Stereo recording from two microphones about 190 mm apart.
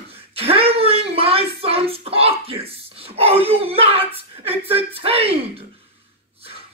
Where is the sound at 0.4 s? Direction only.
30° right (ahead or behind).